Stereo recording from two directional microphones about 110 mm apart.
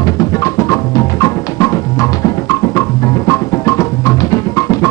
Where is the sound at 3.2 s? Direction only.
30° left (ahead or behind).